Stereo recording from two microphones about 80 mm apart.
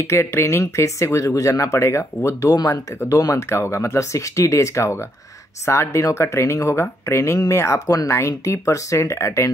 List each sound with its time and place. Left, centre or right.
0.0 s speech: left